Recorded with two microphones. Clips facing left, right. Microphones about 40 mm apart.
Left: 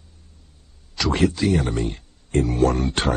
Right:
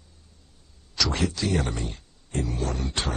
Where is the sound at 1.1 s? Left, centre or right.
Left.